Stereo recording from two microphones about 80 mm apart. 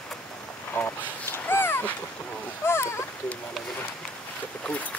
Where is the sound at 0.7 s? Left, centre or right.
Left.